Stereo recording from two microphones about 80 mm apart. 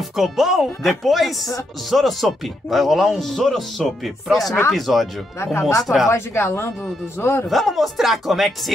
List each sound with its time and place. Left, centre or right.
0.0 s speech: centre
5.4 s speech: left
7.4 s speech: centre